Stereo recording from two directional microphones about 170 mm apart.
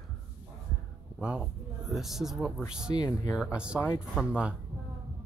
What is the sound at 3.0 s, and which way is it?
Speech, 20° left (ahead or behind).